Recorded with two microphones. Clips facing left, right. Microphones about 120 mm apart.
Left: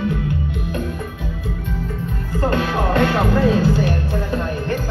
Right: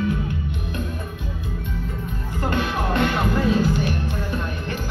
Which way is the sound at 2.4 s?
30° left (ahead or behind).